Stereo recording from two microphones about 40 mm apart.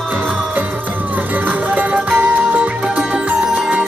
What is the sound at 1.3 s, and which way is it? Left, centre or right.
Music, right.